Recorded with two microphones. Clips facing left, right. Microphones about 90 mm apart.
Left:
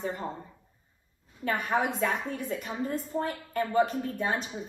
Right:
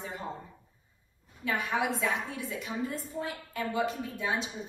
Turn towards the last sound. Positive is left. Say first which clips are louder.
# left 3 dB
turn(degrees=45)  # may be behind; listen again after turning